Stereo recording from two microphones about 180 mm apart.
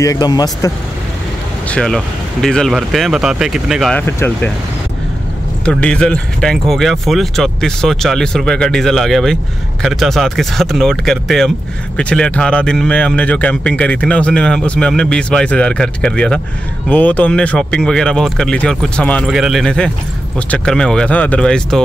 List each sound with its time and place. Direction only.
0.0 s speech: 20° left (ahead or behind)
1.7 s speech: 5° left (ahead or behind)
4.0 s speech: 15° left (ahead or behind)
5.7 s speech: 5° left (ahead or behind)